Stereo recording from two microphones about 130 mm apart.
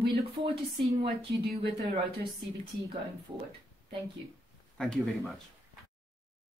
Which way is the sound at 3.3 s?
30° right (ahead or behind).